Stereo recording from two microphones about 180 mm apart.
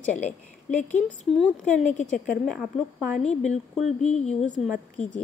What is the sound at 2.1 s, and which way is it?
Speech, centre (ahead or behind).